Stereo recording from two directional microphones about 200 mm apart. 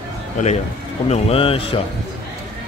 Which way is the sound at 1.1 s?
30° left (ahead or behind).